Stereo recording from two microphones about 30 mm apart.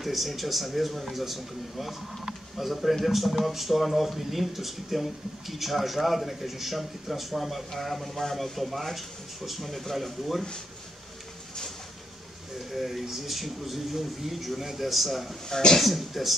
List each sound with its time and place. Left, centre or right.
0.0 s speech: centre
12.7 s speech: centre